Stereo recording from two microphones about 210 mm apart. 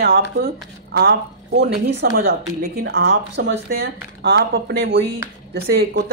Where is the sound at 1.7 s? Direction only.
50° right (ahead or behind).